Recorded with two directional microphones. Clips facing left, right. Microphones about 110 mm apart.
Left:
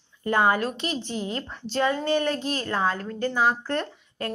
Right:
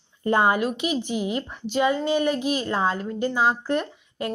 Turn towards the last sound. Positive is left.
turn(degrees=-15)  # may be behind; listen again after turning